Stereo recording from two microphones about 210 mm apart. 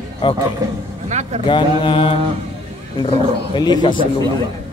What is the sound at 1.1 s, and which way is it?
Speech, 35° right (ahead or behind).